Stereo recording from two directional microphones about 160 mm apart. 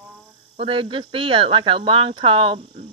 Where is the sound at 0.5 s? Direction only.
35° right (ahead or behind).